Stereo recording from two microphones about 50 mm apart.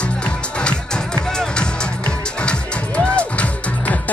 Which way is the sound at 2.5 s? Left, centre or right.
Left.